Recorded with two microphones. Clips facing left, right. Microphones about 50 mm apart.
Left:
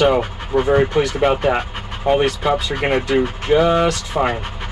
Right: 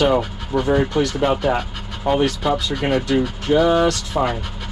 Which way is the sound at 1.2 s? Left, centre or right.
Left.